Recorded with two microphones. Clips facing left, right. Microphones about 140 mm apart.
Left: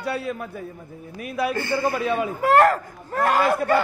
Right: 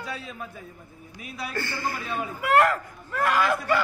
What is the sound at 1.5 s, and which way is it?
Speech, 20° left (ahead or behind).